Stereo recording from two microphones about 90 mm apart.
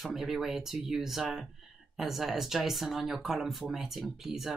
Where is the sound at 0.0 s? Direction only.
5° right (ahead or behind).